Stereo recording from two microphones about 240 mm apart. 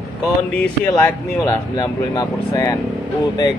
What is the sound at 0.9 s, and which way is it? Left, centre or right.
Speech, centre.